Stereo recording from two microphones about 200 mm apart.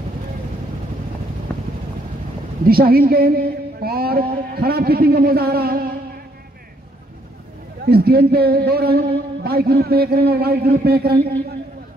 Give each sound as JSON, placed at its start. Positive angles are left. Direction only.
{"t": 1.5, "sound": "vehicle", "side_deg": 5}
{"t": 2.6, "sound": "a man's voice", "side_deg": -50}
{"t": 7.8, "sound": "a man's voice", "side_deg": -50}